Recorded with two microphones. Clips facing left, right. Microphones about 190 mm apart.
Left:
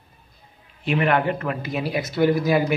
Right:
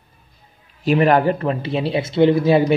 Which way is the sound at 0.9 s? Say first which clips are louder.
Right 6 dB; 40° right (ahead or behind).